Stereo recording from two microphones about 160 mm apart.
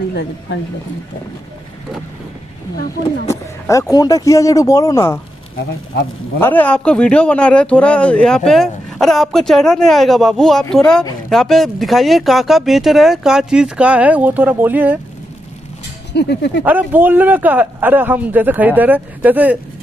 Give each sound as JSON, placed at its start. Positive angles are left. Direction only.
{"t": 0.1, "sound": "speech", "side_deg": 90}
{"t": 3.3, "sound": "a sound", "side_deg": 20}
{"t": 3.9, "sound": "speech", "side_deg": 25}
{"t": 6.4, "sound": "a man's voice", "side_deg": 10}
{"t": 16.1, "sound": "speech", "side_deg": 90}
{"t": 16.6, "sound": "a man's voice", "side_deg": -10}